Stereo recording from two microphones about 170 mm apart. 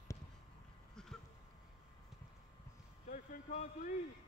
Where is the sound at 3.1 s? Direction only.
45° left (ahead or behind).